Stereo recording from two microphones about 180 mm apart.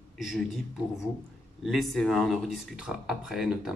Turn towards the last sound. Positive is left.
turn(degrees=-5)  # may be behind; listen again after turning